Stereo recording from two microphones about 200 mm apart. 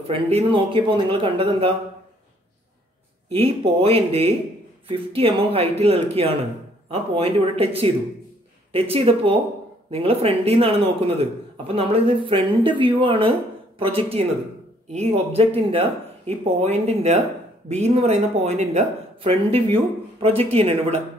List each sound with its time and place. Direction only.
0.1 s a man's voice: 30° right (ahead or behind)
3.3 s a man's voice: 30° right (ahead or behind)